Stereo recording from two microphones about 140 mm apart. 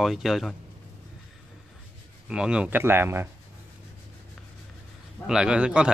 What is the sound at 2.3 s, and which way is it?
Speech, 5° right (ahead or behind).